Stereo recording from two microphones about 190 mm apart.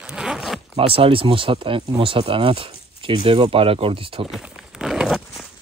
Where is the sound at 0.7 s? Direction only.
30° right (ahead or behind).